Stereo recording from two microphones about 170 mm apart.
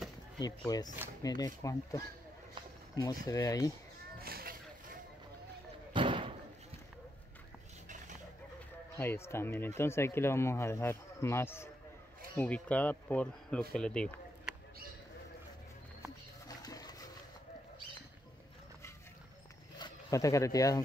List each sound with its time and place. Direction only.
0.4 s speech: 20° left (ahead or behind)
4.2 s vehicle: 60° right (ahead or behind)
5.9 s slam: 30° right (ahead or behind)
8.9 s speech: 15° left (ahead or behind)
16.4 s a sound: 20° left (ahead or behind)
19.8 s speech: 20° left (ahead or behind)